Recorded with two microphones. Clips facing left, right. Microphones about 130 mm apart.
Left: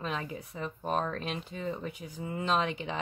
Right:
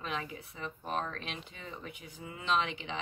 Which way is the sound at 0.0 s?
35° left (ahead or behind).